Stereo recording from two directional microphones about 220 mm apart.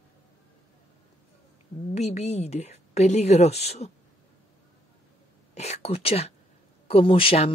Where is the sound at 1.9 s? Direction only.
30° left (ahead or behind).